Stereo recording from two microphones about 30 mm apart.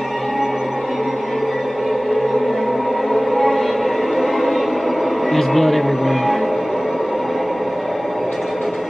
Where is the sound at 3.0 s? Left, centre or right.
Centre.